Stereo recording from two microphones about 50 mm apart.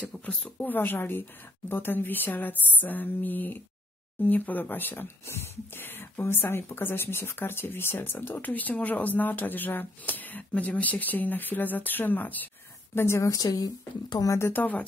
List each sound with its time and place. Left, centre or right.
0.0 s speech: left
5.2 s a woman's voice: left
5.8 s speech: left
6.2 s speech: left
12.9 s a woman's voice: left
14.5 s speech: left